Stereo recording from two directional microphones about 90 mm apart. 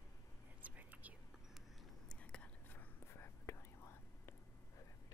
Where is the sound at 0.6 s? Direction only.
20° right (ahead or behind).